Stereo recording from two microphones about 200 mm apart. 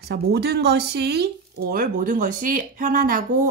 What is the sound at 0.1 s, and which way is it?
Speech, 55° right (ahead or behind).